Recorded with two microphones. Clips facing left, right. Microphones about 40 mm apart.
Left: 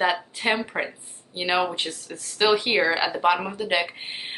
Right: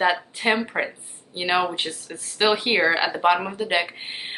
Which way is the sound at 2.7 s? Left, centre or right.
Centre.